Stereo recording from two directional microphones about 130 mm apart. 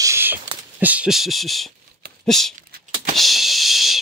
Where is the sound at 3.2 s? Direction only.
Centre (ahead or behind).